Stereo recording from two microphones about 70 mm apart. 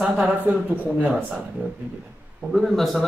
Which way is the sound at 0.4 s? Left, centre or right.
Right.